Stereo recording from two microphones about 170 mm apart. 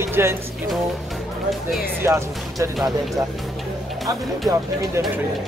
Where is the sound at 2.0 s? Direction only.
15° right (ahead or behind).